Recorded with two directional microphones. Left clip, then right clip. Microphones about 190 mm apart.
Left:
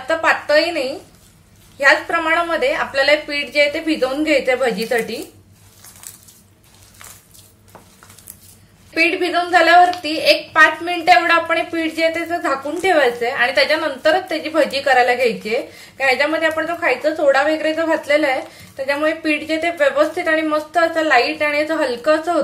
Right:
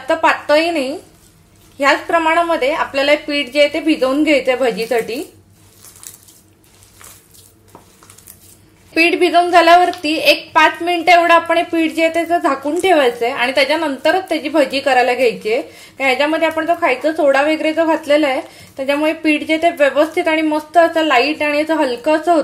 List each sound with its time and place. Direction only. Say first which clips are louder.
0.0 s a woman's voice: right 2 dB; 30° right (ahead or behind)
8.9 s a woman's voice: right 5 dB; 30° right (ahead or behind)